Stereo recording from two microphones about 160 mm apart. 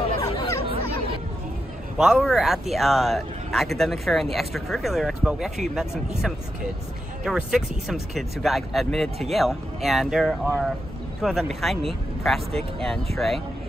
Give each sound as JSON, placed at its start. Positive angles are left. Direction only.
{"t": 0.2, "sound": "chatter", "side_deg": 20}
{"t": 2.0, "sound": "speech", "side_deg": -5}